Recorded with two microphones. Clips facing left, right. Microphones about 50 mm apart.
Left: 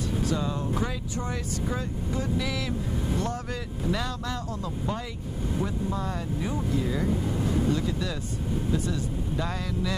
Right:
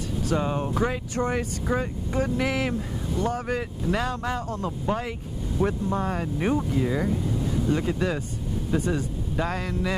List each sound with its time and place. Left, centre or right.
0.3 s speech: right
3.2 s speech: centre
3.4 s speech: right
6.5 s speech: right